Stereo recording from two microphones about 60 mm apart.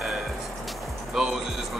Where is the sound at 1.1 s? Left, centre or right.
Centre.